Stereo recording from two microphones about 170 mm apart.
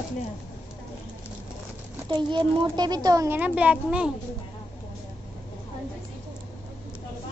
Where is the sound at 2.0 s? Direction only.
25° right (ahead or behind); by 4.1 s 5° right (ahead or behind).